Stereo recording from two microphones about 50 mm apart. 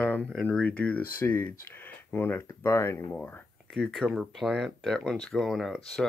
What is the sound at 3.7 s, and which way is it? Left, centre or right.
Speech, centre.